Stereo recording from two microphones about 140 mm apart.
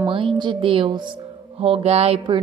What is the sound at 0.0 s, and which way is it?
Speech, 35° right (ahead or behind).